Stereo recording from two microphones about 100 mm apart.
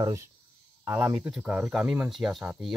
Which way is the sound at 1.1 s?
15° right (ahead or behind).